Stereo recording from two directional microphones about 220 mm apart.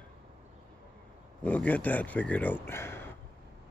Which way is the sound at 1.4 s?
5° left (ahead or behind).